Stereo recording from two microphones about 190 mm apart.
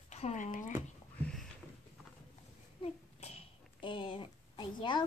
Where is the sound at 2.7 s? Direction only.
30° left (ahead or behind).